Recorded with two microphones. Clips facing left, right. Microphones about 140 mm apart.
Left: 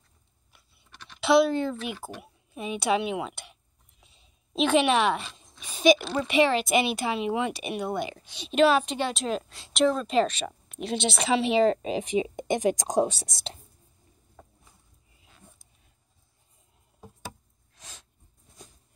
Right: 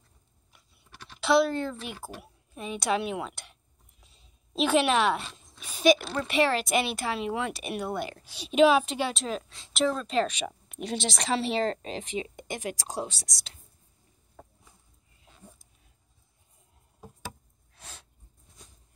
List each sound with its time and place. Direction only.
0.5 s a woman's voice: 5° right (ahead or behind)
10.2 s speech: 10° right (ahead or behind)
10.9 s a woman's voice: 5° left (ahead or behind); by 13.6 s 25° left (ahead or behind)
17.7 s gasp: 10° right (ahead or behind)